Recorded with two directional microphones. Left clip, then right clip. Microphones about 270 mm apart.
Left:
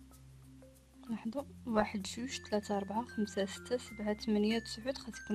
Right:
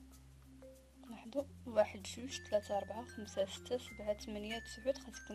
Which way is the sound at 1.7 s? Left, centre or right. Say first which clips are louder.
Even; left.